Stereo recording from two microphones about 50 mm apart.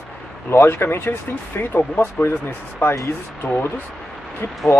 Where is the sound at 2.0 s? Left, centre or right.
Left.